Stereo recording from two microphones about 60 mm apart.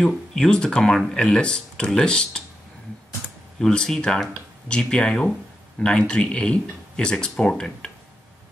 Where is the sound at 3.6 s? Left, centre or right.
Centre.